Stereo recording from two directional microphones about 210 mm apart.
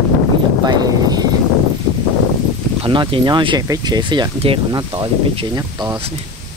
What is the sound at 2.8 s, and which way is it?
Speech, 25° right (ahead or behind).